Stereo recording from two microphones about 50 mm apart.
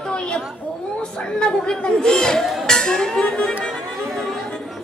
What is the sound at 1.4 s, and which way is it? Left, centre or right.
A woman's voice, centre.